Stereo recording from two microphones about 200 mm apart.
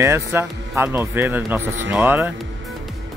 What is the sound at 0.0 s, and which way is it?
Speech, 15° right (ahead or behind).